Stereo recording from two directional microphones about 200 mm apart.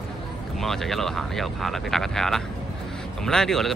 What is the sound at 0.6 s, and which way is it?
Speech, centre (ahead or behind).